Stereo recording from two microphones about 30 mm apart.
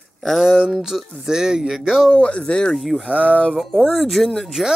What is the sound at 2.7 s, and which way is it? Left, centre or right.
Speech, centre.